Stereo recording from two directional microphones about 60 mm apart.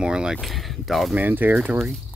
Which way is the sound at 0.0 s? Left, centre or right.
Centre.